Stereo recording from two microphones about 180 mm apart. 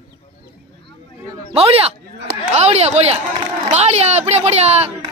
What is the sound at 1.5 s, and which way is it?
A man's voice, 35° right (ahead or behind).